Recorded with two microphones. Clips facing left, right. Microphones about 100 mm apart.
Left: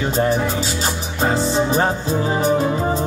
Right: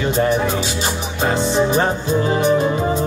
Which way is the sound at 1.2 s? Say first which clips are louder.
Even; centre (ahead or behind).